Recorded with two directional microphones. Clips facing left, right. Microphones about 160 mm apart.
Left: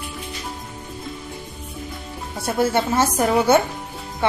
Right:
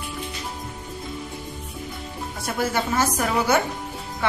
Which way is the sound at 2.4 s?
25° left (ahead or behind).